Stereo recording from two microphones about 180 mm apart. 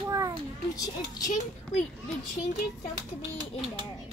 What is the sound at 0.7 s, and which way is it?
Speech, 20° left (ahead or behind).